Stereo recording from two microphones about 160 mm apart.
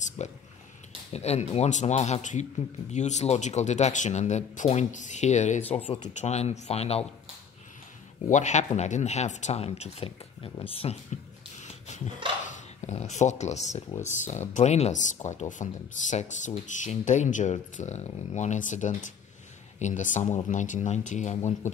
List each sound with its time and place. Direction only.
0.2 s speech: 45° left (ahead or behind)
6.0 s speech: 45° left (ahead or behind)
8.3 s speech: 50° left (ahead or behind)
11.6 s dog: 50° left (ahead or behind)
12.4 s speech: 50° left (ahead or behind)